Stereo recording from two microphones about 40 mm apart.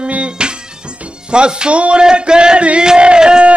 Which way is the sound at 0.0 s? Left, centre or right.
Right.